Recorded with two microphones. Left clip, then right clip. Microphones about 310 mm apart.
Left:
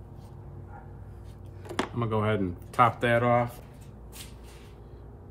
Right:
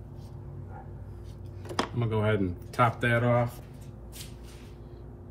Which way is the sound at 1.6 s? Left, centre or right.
Centre.